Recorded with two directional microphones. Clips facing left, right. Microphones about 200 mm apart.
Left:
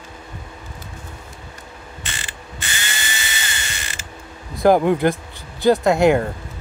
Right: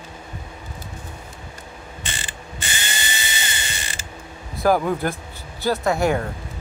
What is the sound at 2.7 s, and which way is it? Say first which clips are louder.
Tools: even; 20° right (ahead or behind).